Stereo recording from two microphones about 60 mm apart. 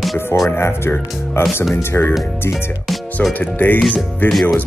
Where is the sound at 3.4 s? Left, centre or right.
Left.